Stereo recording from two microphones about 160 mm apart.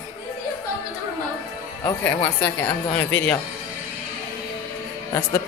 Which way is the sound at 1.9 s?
15° left (ahead or behind).